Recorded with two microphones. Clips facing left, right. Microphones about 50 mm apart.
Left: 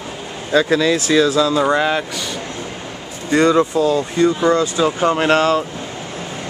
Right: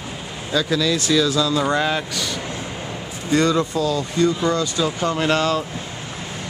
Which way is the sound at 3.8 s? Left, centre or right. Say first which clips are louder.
Left 4 dB; left.